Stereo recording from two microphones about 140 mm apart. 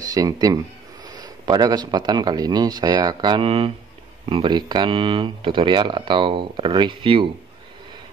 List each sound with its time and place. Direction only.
0.0 s speech: 25° right (ahead or behind)